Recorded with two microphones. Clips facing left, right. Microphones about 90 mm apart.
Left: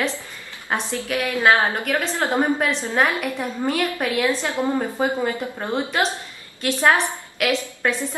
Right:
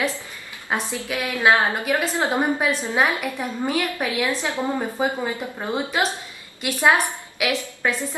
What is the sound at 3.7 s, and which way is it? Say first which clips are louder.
A woman's voice: left 3 dB; centre (ahead or behind).